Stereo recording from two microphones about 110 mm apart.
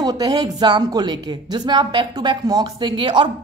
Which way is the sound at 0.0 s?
35° right (ahead or behind).